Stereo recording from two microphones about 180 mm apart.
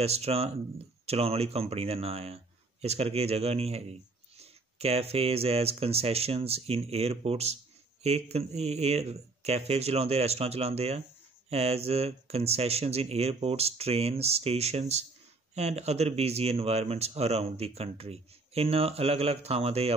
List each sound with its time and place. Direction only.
0.0 s speech: 35° right (ahead or behind)